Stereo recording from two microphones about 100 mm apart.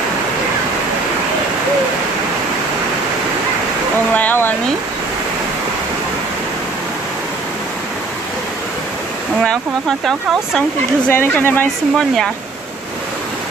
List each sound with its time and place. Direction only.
4.1 s a sound: 15° left (ahead or behind)
9.4 s speech: centre (ahead or behind)
11.1 s speech: 20° left (ahead or behind)